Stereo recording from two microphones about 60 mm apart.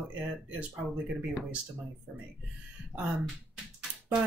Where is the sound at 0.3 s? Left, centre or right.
Centre.